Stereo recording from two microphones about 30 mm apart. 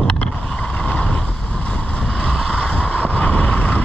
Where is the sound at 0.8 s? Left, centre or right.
Left.